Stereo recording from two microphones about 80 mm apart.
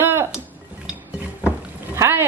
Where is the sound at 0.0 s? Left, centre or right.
Right.